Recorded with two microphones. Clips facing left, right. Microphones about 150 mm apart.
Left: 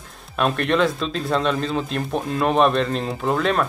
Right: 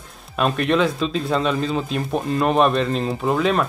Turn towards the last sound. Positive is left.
turn(degrees=0)  # may be behind; listen again after turning